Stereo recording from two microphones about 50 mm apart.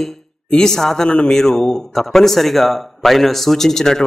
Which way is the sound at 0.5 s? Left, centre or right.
Centre.